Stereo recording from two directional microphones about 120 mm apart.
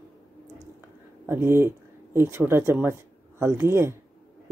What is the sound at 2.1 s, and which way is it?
Speech, 20° right (ahead or behind).